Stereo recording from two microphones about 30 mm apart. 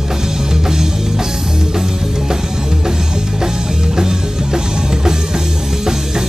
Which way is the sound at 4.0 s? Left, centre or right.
Centre.